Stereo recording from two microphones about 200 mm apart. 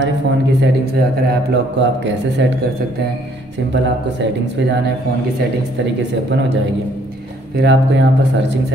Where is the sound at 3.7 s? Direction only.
60° right (ahead or behind).